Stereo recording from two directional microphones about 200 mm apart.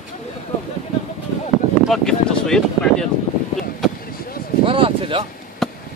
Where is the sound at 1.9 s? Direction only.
5° left (ahead or behind).